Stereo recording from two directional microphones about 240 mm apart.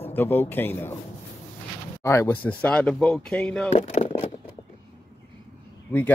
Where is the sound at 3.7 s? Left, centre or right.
Left.